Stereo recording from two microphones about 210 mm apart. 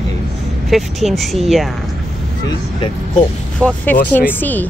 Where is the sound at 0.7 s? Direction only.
Centre (ahead or behind).